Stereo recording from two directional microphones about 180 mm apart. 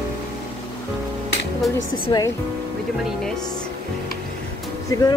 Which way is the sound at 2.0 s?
20° left (ahead or behind).